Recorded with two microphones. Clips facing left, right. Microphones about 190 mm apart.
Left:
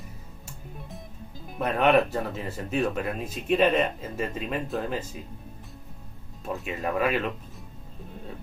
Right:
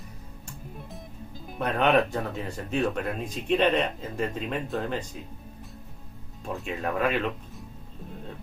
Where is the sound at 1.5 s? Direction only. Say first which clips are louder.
Left 1 dB; centre (ahead or behind).